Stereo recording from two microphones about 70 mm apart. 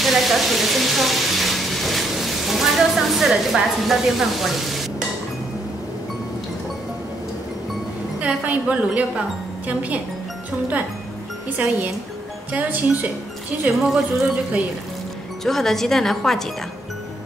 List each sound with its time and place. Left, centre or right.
0.0 s speech: centre
8.2 s a woman's voice: centre
12.5 s a woman's voice: right
13.7 s speech: centre
15.4 s speech: centre